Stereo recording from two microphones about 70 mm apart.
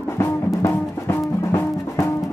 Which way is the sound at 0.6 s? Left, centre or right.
Left.